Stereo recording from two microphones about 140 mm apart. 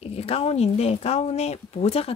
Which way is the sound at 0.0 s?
45° left (ahead or behind).